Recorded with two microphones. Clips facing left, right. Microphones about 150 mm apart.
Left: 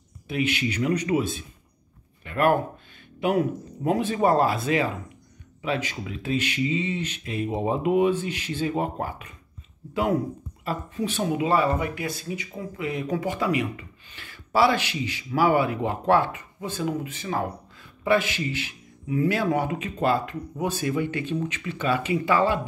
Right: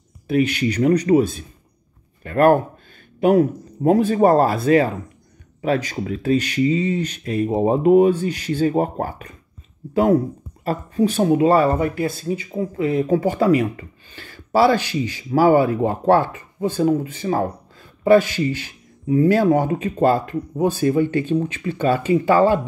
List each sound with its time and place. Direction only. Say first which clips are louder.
0.3 s speech: right 7 dB; 45° right (ahead or behind)
2.2 s a sound: right 7 dB; 40° right (ahead or behind)
3.2 s speech: right 8 dB; 40° right (ahead or behind)
10.6 s speech: right 9 dB; 40° right (ahead or behind)